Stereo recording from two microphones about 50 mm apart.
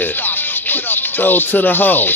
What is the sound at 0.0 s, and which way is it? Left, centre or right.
Music, left.